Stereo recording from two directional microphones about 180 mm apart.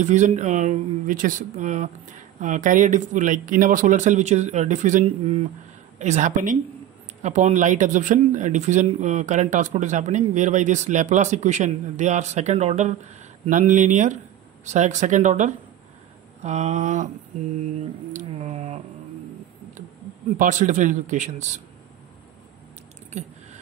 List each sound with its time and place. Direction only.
0.0 s speech: 40° right (ahead or behind)
18.1 s a sound: 40° right (ahead or behind)
20.3 s speech: 45° right (ahead or behind)
23.2 s speech: 40° right (ahead or behind)